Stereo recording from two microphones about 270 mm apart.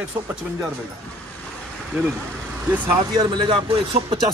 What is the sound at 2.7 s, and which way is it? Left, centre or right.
Speech, centre.